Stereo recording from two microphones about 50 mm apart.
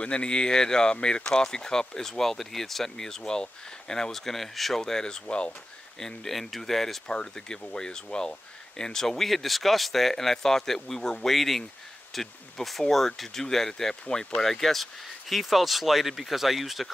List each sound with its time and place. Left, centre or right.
0.0 s speech: centre
5.9 s speech: centre
14.0 s speech: left
14.4 s speech: centre